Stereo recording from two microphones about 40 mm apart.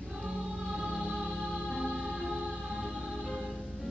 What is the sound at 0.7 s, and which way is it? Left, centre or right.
Music, centre.